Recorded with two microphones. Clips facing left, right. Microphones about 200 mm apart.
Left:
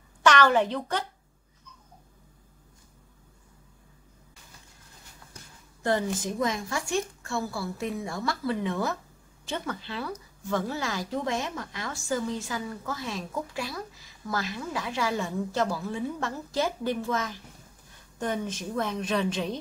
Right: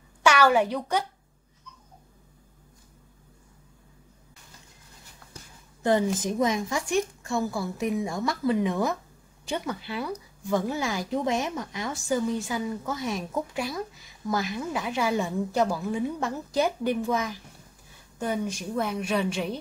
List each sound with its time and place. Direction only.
0.2 s speech: 10° right (ahead or behind)
5.8 s speech: 20° right (ahead or behind)